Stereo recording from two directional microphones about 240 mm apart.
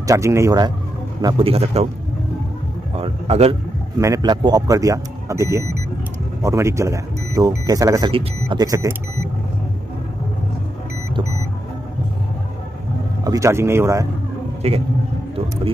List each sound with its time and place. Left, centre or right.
0.0 s a man's voice: centre
3.0 s a man's voice: right
13.2 s speech: centre
14.6 s a man's voice: right